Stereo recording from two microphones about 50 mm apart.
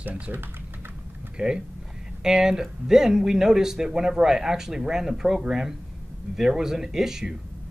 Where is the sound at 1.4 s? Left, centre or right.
Centre.